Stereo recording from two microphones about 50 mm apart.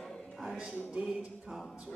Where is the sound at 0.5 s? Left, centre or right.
Centre.